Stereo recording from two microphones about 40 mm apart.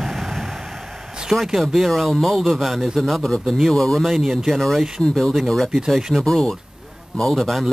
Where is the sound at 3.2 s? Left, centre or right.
Left.